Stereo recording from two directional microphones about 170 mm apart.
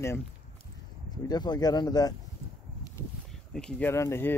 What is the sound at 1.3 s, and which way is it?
Speech, 25° left (ahead or behind).